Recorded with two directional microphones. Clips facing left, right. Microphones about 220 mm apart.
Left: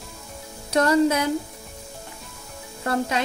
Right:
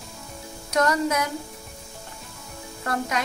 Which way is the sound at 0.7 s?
30° left (ahead or behind).